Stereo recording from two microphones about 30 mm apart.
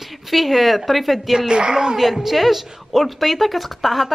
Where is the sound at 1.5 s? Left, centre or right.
Right.